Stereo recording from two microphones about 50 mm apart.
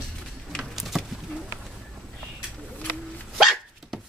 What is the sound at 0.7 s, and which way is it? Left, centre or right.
Bird, centre.